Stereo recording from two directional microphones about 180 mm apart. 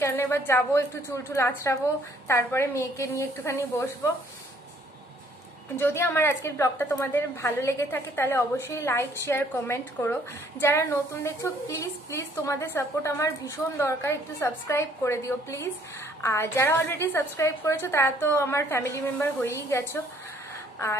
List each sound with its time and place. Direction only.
0.0 s a woman's voice: 15° left (ahead or behind)
5.8 s a woman's voice: 10° left (ahead or behind)